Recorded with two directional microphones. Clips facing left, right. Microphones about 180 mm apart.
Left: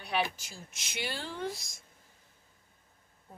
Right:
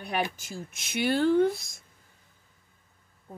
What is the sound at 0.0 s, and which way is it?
A woman's voice, 50° right (ahead or behind).